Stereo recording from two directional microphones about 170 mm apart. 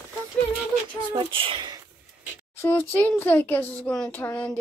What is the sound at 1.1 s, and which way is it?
Speech, 30° right (ahead or behind).